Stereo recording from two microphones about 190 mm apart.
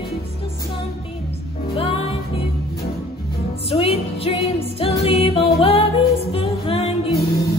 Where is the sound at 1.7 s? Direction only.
30° left (ahead or behind).